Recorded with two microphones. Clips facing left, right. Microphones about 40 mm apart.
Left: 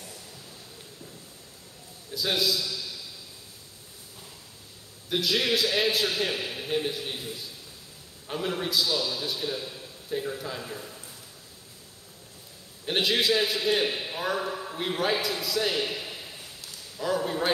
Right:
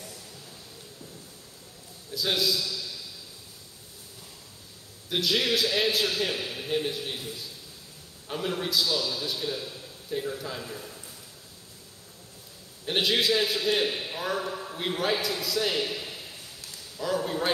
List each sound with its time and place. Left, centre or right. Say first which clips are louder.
2.1 s a man's voice: even; centre
5.1 s a man's voice: even; centre
8.3 s a man's voice: even; centre
12.8 s a man's voice: even; centre